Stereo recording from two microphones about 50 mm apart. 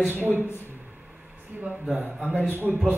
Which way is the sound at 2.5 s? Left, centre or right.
Right.